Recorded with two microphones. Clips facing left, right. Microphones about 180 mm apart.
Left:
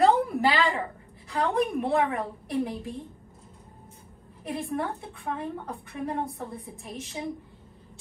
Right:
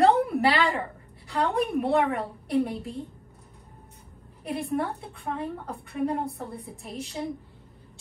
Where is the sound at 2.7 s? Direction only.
65° right (ahead or behind).